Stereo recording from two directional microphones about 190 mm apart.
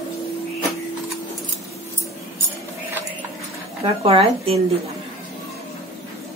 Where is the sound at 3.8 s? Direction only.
30° right (ahead or behind).